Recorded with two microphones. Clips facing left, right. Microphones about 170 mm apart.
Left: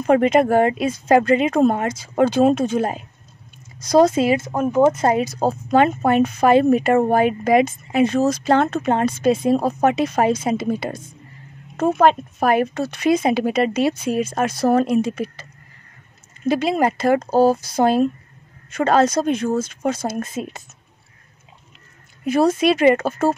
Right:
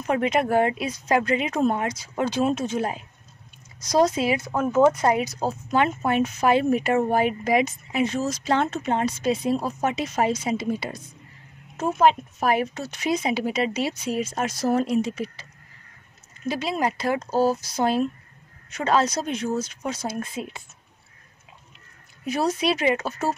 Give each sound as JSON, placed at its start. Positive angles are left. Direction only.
{"t": 0.0, "sound": "speech", "side_deg": 50}
{"t": 4.3, "sound": "speech", "side_deg": 20}
{"t": 5.7, "sound": "speech", "side_deg": 45}
{"t": 6.2, "sound": "speech", "side_deg": 50}
{"t": 16.4, "sound": "speech", "side_deg": 55}
{"t": 22.2, "sound": "speech", "side_deg": 50}